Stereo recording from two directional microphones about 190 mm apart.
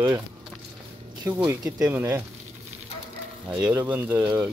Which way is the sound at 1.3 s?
10° right (ahead or behind).